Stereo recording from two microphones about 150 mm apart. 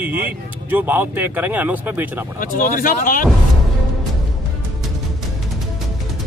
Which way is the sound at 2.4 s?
65° left (ahead or behind).